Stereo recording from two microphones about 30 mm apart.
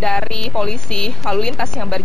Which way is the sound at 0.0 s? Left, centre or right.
Left.